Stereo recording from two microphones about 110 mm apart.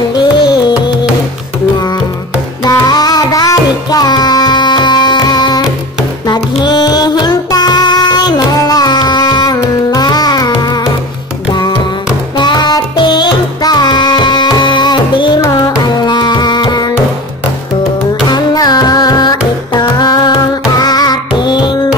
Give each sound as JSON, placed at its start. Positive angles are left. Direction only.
{"t": 0.1, "sound": "music", "side_deg": 45}
{"t": 2.6, "sound": "music", "side_deg": 35}
{"t": 12.4, "sound": "music", "side_deg": 40}
{"t": 15.5, "sound": "carnatic music", "side_deg": 40}
{"t": 18.3, "sound": "music", "side_deg": 35}